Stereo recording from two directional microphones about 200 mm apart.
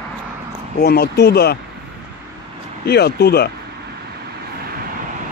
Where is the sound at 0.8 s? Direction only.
50° left (ahead or behind).